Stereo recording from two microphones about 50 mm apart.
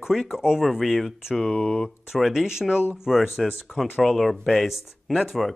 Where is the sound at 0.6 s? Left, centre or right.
Centre.